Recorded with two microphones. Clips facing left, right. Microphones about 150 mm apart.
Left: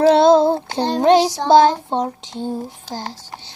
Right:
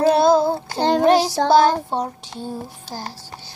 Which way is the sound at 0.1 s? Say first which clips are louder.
Left 4 dB; 25° left (ahead or behind).